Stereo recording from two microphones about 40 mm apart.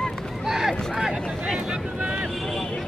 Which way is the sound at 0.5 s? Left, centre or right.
Centre.